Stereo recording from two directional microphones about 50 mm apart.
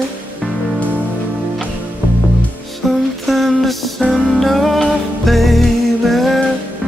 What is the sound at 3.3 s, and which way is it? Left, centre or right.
Music, centre.